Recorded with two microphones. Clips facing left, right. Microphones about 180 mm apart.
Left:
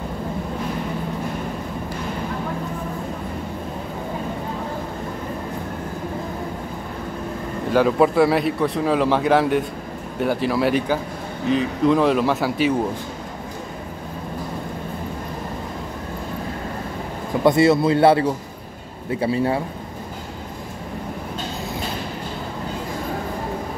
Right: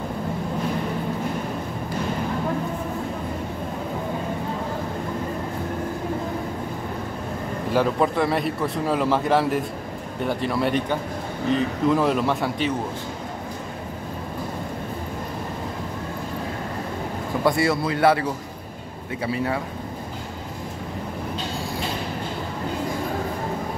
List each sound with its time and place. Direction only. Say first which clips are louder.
7.7 s speech: left 5 dB; 5° left (ahead or behind)
17.5 s a man's voice: left 7 dB; 25° left (ahead or behind)